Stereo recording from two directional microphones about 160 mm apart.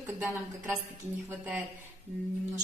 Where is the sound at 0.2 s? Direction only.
15° right (ahead or behind).